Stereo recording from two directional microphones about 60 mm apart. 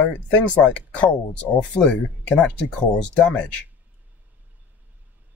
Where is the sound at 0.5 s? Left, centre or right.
Left.